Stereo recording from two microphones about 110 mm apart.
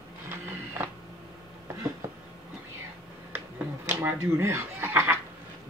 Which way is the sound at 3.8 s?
25° right (ahead or behind).